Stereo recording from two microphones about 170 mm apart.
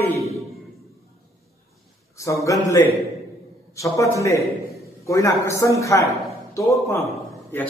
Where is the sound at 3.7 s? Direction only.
20° left (ahead or behind).